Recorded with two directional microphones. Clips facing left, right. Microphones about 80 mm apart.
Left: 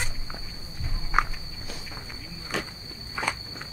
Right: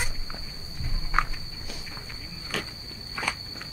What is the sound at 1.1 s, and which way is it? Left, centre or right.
Walk, centre.